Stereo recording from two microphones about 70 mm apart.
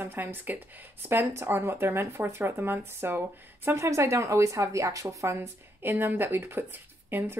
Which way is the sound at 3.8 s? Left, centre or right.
Right.